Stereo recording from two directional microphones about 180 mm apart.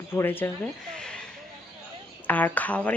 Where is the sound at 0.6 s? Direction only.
5° left (ahead or behind).